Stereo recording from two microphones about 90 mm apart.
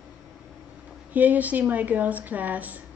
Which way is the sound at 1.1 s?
20° right (ahead or behind).